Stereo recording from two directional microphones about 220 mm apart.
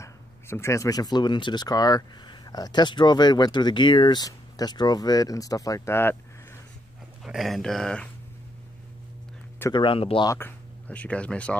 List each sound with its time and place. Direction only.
0.0 s speech: 10° left (ahead or behind)
7.2 s speech: centre (ahead or behind)
9.6 s speech: 20° left (ahead or behind); by 11.5 s 5° left (ahead or behind)